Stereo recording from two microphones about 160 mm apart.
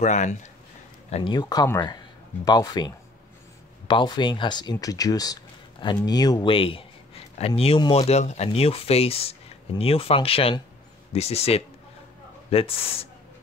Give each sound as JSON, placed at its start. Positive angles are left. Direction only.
{"t": 0.0, "sound": "speech", "side_deg": 50}
{"t": 1.1, "sound": "speech", "side_deg": 30}